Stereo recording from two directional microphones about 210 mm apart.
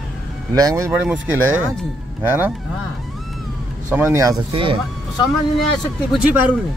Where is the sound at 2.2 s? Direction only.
10° right (ahead or behind).